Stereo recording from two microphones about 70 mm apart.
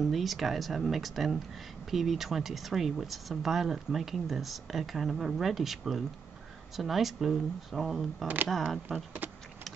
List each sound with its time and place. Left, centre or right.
0.0 s speech: centre
8.9 s speech: right